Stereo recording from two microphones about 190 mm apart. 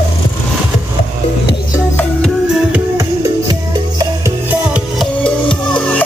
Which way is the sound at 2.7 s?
15° right (ahead or behind).